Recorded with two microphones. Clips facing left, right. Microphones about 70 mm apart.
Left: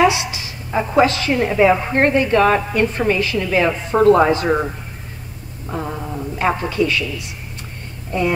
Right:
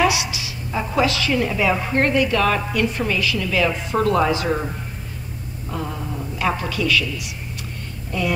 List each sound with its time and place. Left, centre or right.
0.0 s a woman's voice: left
5.7 s a woman's voice: left